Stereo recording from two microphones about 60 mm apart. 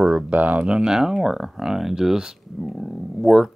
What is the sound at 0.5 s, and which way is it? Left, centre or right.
Speech, centre.